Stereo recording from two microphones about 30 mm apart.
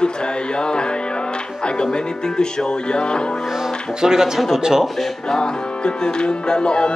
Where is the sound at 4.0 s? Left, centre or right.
Centre.